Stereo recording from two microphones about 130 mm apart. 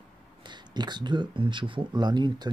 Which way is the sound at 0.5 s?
35° right (ahead or behind).